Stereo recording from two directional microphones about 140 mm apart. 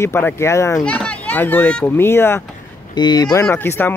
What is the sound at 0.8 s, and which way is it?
Speech, 10° left (ahead or behind).